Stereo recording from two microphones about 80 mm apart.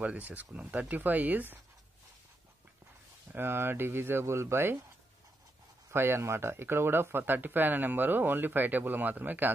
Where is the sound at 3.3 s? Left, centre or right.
Right.